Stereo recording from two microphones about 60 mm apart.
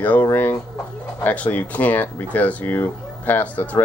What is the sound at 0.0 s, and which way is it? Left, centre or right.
Speech, left.